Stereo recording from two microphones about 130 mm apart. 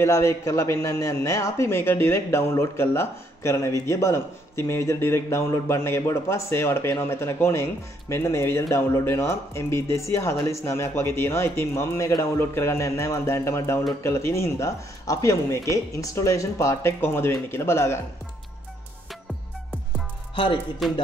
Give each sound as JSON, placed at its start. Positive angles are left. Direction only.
{"t": 0.0, "sound": "speech", "side_deg": 20}
{"t": 20.8, "sound": "music", "side_deg": 0}